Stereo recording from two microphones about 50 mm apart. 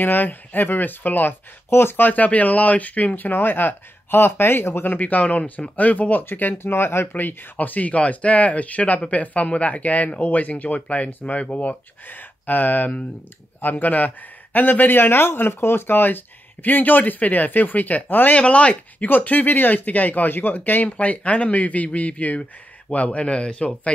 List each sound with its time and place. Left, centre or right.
0.0 s speech: left
1.7 s speech: left
2.0 s speech: left
4.8 s speech: left
12.1 s speech: left
18.3 s speech: left
19.0 s speech: left